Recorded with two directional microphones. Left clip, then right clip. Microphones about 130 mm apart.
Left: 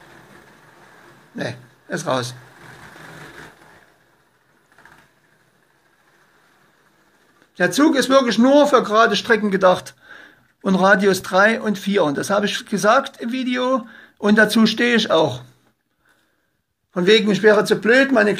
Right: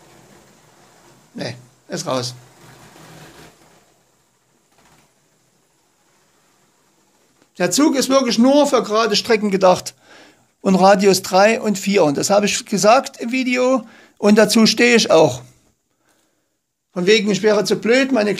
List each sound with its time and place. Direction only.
1.3 s a man's voice: 5° right (ahead or behind)
7.5 s speech: 25° right (ahead or behind)
16.9 s a man's voice: 10° right (ahead or behind)